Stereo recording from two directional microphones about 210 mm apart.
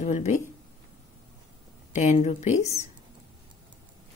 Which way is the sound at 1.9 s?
35° left (ahead or behind).